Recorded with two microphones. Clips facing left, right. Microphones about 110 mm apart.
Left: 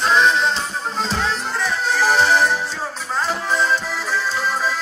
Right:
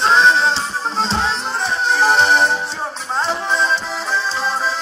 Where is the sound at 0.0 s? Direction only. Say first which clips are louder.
Right 3 dB; 30° right (ahead or behind).